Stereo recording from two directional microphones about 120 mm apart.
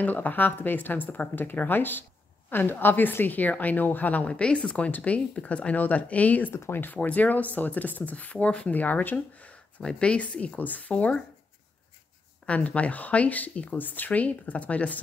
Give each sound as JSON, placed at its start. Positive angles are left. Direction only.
{"t": 0.0, "sound": "a woman's voice", "side_deg": 15}
{"t": 12.4, "sound": "a woman's voice", "side_deg": 10}